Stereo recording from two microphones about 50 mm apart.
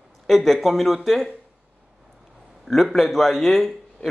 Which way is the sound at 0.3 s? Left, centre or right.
Centre.